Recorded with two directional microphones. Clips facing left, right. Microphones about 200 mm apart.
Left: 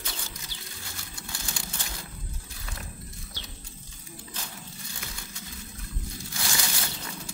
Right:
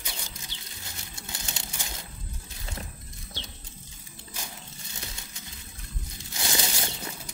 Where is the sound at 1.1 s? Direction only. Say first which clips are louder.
Left 1 dB; 20° right (ahead or behind).